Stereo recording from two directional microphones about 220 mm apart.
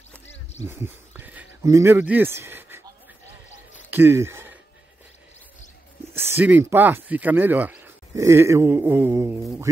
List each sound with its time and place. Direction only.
0.3 s a sound: 30° left (ahead or behind)
0.7 s speech: 10° right (ahead or behind)
3.9 s speech: 10° right (ahead or behind)
6.1 s speech: 10° right (ahead or behind)